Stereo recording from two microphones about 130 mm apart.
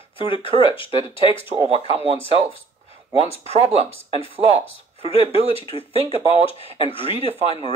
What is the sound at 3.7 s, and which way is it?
Speech, 55° right (ahead or behind).